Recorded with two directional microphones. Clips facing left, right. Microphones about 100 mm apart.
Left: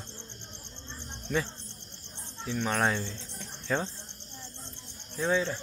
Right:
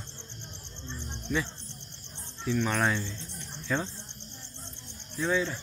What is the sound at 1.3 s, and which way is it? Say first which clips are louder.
Speech: even; 60° left (ahead or behind).